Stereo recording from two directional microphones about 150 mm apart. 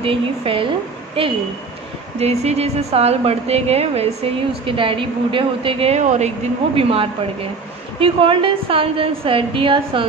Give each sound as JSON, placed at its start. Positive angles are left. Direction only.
{"t": 0.0, "sound": "a woman's voice", "side_deg": -35}